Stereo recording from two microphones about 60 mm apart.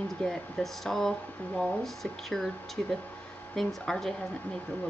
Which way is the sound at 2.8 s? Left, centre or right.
Centre.